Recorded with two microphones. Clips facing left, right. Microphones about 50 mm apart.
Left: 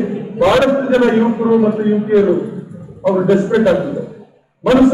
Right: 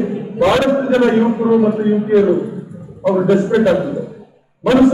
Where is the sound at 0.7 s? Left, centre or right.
Centre.